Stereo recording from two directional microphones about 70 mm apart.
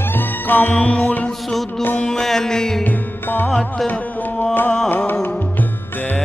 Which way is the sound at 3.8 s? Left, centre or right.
Centre.